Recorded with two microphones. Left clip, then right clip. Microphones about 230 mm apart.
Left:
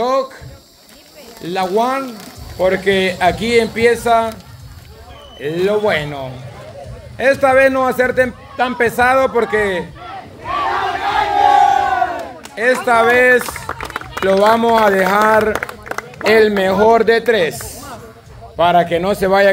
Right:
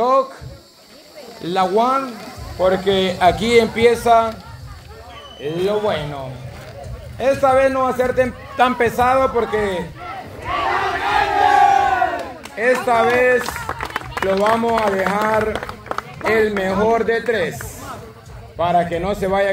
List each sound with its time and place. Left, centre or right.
1.4 s a man's voice: centre
5.4 s a man's voice: left
8.5 s a man's voice: centre
8.8 s a man's voice: centre
10.4 s crowd: centre
12.5 s a man's voice: centre
14.4 s a man's voice: left